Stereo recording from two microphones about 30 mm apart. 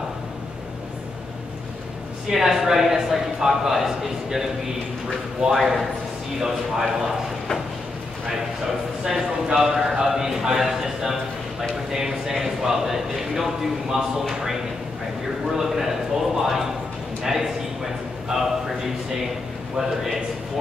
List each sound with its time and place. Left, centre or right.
2.2 s speech: centre
5.6 s speech: centre
9.0 s a man's voice: centre
15.5 s a sound: centre
17.2 s clip-clop: centre
18.3 s a man's voice: centre